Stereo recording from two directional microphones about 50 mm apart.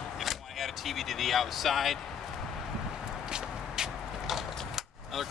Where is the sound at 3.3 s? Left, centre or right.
Centre.